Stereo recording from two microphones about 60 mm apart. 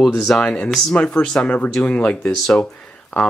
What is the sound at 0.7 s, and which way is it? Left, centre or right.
Speech, centre.